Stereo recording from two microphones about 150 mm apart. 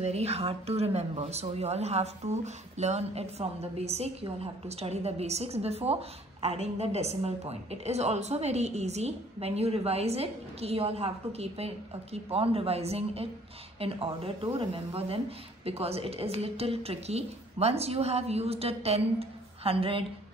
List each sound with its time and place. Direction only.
0.0 s speech: 45° right (ahead or behind)